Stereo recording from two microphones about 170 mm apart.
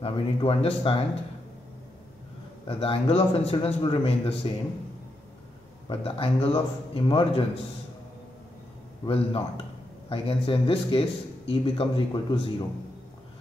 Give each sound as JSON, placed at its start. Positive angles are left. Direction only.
{"t": 0.0, "sound": "a man's voice", "side_deg": 35}
{"t": 2.6, "sound": "a man's voice", "side_deg": 35}
{"t": 5.9, "sound": "a man's voice", "side_deg": 35}
{"t": 9.0, "sound": "a man's voice", "side_deg": 35}